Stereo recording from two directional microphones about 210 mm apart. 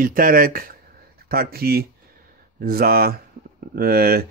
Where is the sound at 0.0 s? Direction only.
40° right (ahead or behind).